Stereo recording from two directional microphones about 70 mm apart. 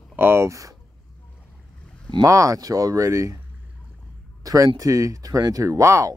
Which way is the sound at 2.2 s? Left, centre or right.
Right.